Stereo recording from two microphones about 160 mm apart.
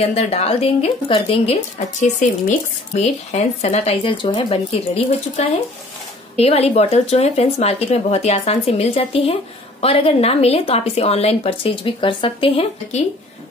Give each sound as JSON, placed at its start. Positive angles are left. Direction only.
{"t": 0.0, "sound": "speech", "side_deg": 40}